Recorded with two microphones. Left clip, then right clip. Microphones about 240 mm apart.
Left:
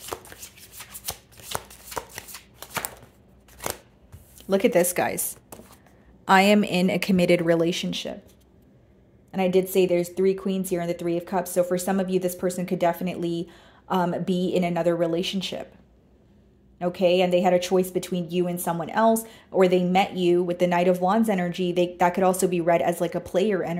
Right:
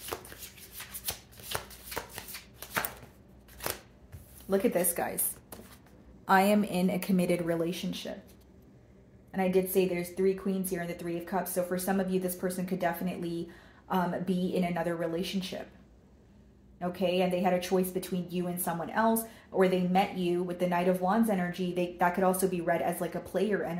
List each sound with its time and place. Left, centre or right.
0.0 s shuffling cards: left
4.5 s speech: left
6.2 s a woman's voice: left
9.3 s speech: left
16.7 s speech: left